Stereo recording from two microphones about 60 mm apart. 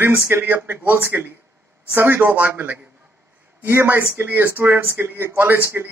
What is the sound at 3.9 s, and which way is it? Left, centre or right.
A man's voice, right.